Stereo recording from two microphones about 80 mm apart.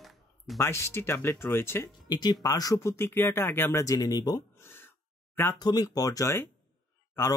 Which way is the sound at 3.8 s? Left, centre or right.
Left.